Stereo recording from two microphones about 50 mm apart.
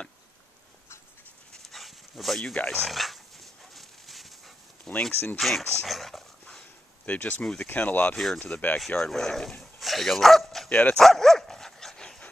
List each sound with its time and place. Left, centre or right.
1.5 s dog: centre
2.5 s speech: left
2.8 s dog: centre
5.1 s speech: left
5.4 s dog: centre
7.1 s speech: left
8.1 s speech: centre
8.5 s speech: left
8.7 s speech: centre
10.7 s dog: left
11.0 s dog: centre